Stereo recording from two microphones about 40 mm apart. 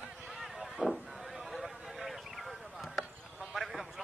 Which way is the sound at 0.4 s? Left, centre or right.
Centre.